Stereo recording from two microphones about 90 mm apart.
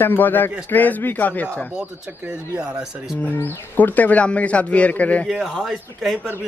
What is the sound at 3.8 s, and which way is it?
A man's voice, 20° left (ahead or behind).